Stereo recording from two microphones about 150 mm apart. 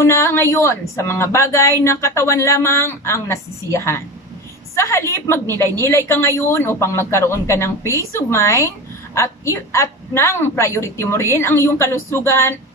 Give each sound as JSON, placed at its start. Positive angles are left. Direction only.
{"t": 0.0, "sound": "speech", "side_deg": 15}